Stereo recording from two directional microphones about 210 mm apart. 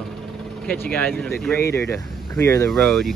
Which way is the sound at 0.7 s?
5° left (ahead or behind).